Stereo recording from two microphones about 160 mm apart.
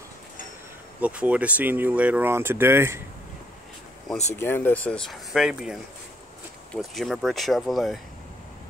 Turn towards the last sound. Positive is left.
turn(degrees=0)  # may be behind; listen again after turning